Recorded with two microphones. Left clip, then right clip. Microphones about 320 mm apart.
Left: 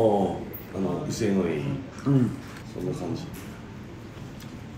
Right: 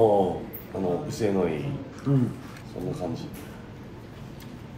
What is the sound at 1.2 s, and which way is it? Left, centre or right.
Speech, centre.